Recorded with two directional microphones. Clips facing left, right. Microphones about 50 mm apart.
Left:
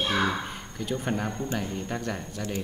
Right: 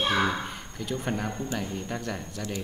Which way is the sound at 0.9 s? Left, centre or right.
Centre.